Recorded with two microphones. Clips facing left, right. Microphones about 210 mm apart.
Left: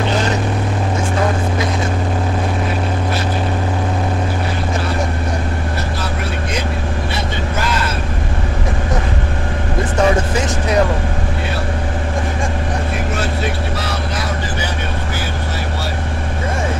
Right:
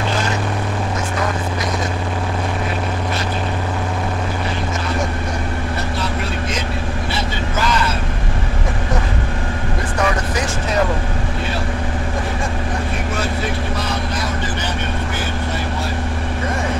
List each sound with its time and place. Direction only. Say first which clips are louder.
9.9 s vehicle: left 5 dB; 30° left (ahead or behind)